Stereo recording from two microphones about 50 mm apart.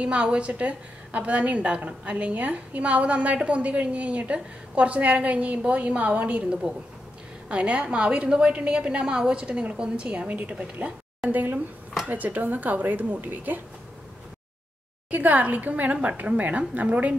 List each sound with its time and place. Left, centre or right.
0.0 s a woman's voice: right
12.1 s a woman's voice: right
15.0 s a woman's voice: right